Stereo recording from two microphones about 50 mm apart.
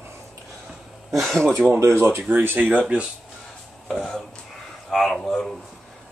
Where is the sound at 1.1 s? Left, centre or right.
Centre.